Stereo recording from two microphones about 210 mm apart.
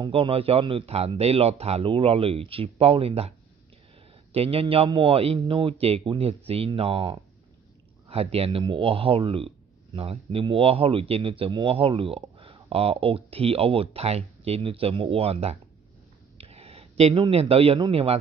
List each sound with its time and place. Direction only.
0.0 s speech: 25° right (ahead or behind)